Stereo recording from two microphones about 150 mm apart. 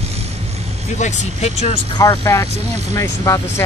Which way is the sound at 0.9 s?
50° left (ahead or behind).